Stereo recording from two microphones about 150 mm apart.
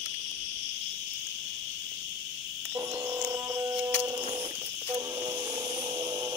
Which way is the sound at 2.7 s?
20° right (ahead or behind).